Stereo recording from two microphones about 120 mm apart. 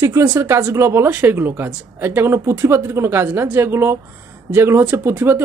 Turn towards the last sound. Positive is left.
turn(degrees=-20)  # may be behind; listen again after turning